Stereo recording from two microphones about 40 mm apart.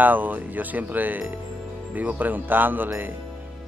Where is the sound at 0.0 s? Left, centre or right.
Right.